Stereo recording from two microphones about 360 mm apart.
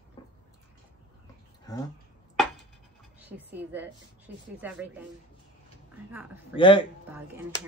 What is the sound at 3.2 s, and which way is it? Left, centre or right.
Speech, centre.